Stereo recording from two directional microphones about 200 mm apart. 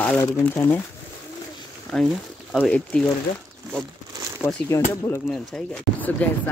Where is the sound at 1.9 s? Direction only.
5° left (ahead or behind).